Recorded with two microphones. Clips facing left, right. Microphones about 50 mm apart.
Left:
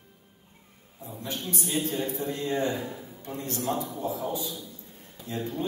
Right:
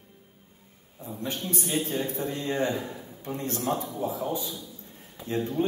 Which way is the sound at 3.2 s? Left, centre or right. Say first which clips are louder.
Right 3 dB; right.